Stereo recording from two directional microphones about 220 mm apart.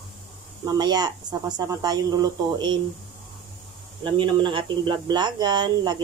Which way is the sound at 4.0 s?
20° right (ahead or behind).